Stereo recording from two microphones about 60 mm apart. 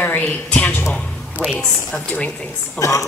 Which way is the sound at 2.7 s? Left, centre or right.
Left.